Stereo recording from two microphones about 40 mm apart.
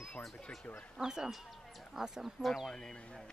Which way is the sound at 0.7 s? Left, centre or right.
Left.